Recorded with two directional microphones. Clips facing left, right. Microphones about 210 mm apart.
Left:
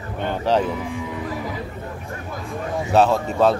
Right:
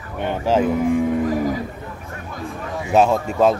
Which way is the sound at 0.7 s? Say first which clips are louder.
Right 10 dB; 50° right (ahead or behind).